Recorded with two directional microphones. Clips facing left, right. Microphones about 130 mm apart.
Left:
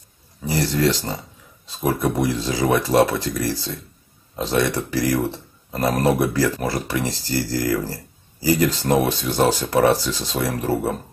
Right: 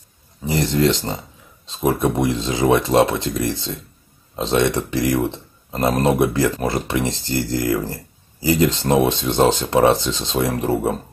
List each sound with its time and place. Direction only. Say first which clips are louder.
0.5 s speech: right 2 dB; 20° right (ahead or behind)